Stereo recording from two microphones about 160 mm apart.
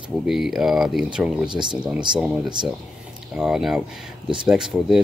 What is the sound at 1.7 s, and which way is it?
Speech, 5° right (ahead or behind).